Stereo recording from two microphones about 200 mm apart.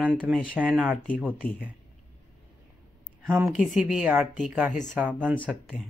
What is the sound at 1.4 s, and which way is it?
Speech, 10° left (ahead or behind).